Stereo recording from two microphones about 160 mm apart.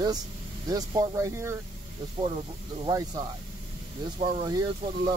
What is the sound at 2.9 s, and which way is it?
Speech, 25° right (ahead or behind).